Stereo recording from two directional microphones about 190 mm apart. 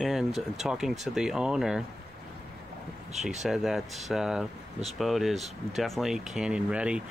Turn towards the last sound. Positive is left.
turn(degrees=-5)  # may be behind; listen again after turning